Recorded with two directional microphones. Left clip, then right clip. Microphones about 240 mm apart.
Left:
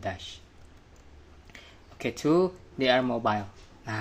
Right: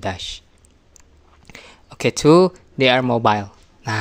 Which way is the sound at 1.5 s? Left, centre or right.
Right.